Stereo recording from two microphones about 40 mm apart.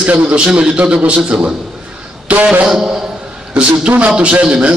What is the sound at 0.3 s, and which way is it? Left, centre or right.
A man's voice, right.